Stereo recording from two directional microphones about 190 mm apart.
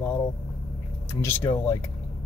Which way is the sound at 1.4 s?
25° left (ahead or behind).